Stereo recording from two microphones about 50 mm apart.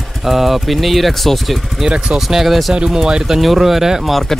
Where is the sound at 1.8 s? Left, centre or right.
Centre.